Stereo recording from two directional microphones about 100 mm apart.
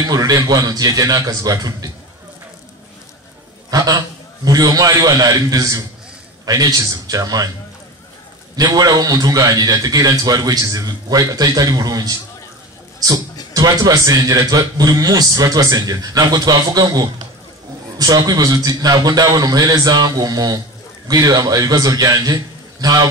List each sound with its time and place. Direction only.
0.0 s a man's voice: 40° right (ahead or behind)
3.7 s a man's voice: 40° right (ahead or behind)
8.5 s a man's voice: 40° right (ahead or behind)